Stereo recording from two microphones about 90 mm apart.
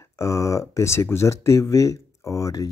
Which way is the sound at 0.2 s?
35° left (ahead or behind).